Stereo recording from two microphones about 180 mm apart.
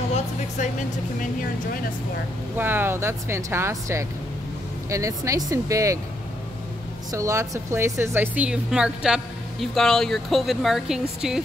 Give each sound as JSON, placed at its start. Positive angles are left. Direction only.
{"t": 2.5, "sound": "speech", "side_deg": -10}
{"t": 7.1, "sound": "speech", "side_deg": -15}